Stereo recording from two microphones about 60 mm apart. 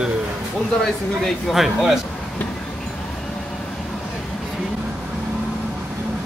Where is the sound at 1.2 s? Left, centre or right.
Centre.